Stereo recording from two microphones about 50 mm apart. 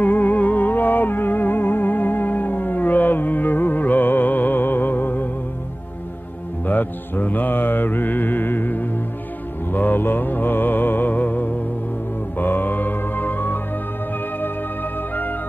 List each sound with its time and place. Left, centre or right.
0.0 s music: left
6.6 s mantra: left
9.7 s music: left
14.4 s organ: left